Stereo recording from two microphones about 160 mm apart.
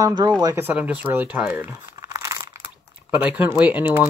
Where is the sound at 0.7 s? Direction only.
10° right (ahead or behind).